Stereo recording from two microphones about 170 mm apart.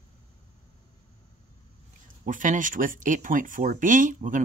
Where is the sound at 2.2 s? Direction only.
50° right (ahead or behind).